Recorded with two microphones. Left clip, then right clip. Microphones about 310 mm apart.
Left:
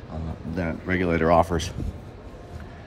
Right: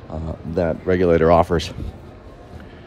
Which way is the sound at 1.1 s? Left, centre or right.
Left.